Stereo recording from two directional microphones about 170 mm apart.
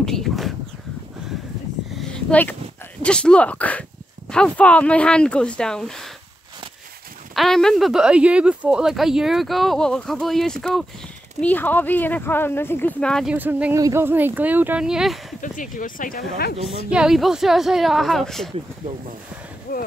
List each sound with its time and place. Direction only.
0.0 s a sound: centre (ahead or behind)
2.0 s a sound: 5° left (ahead or behind)
3.0 s speech: 5° left (ahead or behind)
7.3 s speech: centre (ahead or behind)
13.3 s speech: 10° right (ahead or behind)
15.4 s speech: 50° left (ahead or behind)
16.6 s speech: 5° right (ahead or behind)
19.7 s speech: 60° left (ahead or behind)